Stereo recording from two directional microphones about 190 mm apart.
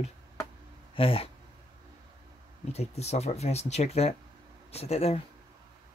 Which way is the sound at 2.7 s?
35° left (ahead or behind).